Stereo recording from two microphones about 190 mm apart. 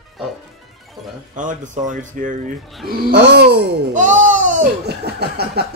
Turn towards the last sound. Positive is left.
turn(degrees=-60)  # may be behind; listen again after turning